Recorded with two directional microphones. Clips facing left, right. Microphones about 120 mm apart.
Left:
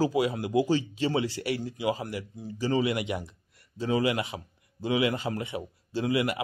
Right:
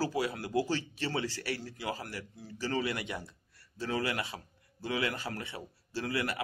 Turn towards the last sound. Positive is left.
turn(degrees=15)  # may be behind; listen again after turning